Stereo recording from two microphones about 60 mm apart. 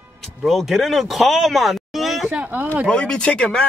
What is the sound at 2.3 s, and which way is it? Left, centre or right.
Speech, right.